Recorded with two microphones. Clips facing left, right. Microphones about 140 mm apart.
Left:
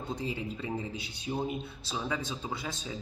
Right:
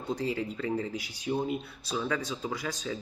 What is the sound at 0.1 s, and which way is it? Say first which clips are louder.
Speech: right 5 dB; 20° left (ahead or behind).